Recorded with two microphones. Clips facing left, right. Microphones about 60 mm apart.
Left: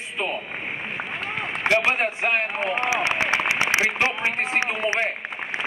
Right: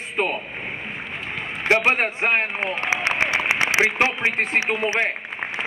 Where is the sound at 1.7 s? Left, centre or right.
Right.